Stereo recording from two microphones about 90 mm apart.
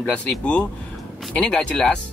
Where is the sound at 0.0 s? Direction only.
15° left (ahead or behind).